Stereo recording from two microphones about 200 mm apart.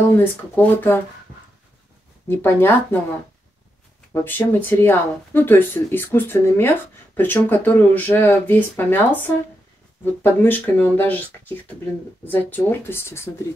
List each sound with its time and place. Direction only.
0.2 s speech: 10° left (ahead or behind)
2.2 s speech: 10° left (ahead or behind)
4.1 s speech: 10° left (ahead or behind)